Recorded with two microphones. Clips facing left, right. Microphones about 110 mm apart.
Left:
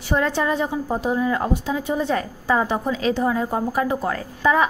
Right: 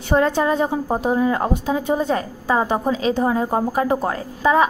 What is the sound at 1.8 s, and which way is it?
Speech, 45° right (ahead or behind).